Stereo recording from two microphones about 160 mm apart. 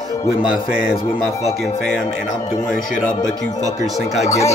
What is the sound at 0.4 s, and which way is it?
Speech, 5° right (ahead or behind).